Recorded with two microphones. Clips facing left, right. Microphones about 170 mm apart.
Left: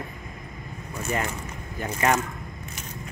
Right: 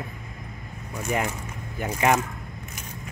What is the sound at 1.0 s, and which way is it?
Speech, 15° right (ahead or behind).